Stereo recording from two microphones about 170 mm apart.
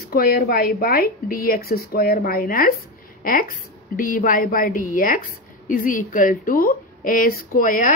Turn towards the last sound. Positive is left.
turn(degrees=50)  # may be behind; listen again after turning